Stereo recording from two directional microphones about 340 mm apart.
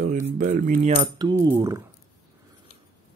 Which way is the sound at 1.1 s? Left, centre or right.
Centre.